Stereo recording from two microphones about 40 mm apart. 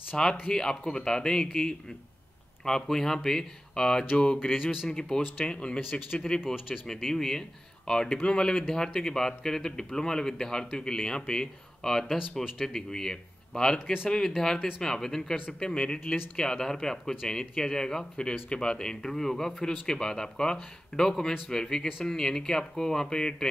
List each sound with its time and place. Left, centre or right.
0.1 s a man's voice: centre
4.6 s a man's voice: centre
5.4 s a man's voice: left
5.8 s speech: left
7.0 s a man's voice: centre
15.6 s a man's voice: left
16.3 s a man's voice: centre